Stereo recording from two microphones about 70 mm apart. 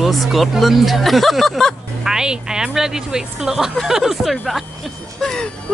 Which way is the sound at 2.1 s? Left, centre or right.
Centre.